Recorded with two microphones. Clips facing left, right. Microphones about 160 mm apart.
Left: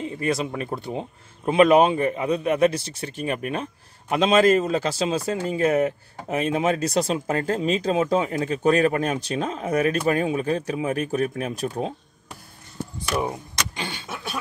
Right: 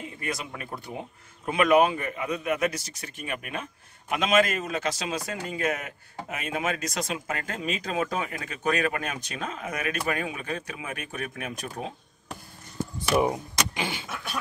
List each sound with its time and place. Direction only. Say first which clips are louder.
0.0 s speech: left 9 dB; 30° left (ahead or behind)
13.1 s vehicle: right 3 dB; 10° right (ahead or behind)